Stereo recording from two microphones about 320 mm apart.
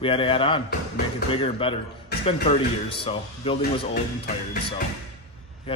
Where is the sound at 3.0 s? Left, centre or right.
Centre.